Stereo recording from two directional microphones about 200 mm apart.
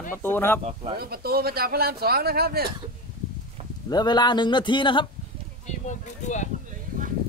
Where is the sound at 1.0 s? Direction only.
50° right (ahead or behind).